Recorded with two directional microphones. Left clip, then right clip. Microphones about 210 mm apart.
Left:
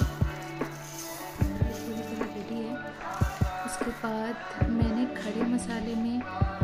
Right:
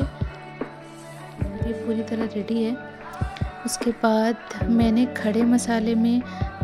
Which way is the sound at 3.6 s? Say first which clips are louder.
Right 13 dB; 35° right (ahead or behind).